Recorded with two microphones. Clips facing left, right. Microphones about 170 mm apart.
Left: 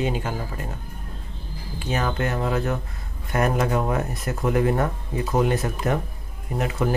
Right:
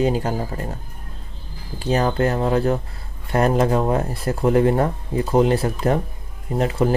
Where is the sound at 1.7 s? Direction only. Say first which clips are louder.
Right 6 dB; 35° right (ahead or behind).